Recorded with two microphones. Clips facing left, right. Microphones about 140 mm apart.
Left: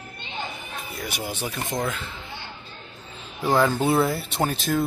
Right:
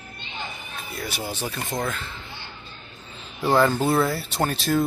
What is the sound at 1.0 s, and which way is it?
Speech, 15° left (ahead or behind).